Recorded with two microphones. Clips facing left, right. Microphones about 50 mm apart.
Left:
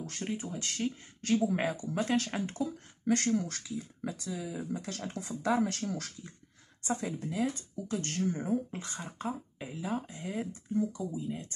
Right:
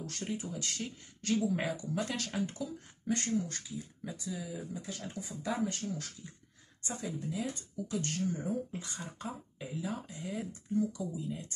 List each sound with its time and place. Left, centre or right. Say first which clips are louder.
0.0 s speech: left 2 dB; left
3.1 s speech: left 4 dB; left
4.8 s speech: left 3 dB; left
6.9 s speech: left 4 dB; left
9.0 s speech: left 5 dB; left